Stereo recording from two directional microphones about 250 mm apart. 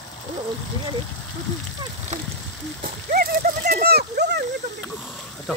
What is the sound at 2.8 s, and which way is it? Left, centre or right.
Speech, right.